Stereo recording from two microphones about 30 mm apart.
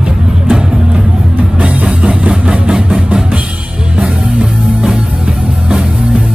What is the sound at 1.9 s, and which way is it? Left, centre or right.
Vehicle, right.